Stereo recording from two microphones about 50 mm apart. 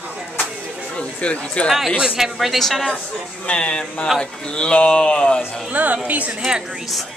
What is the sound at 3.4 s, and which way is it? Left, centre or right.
A man's voice, left.